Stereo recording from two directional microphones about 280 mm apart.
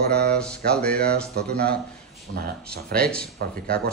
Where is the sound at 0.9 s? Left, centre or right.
Right.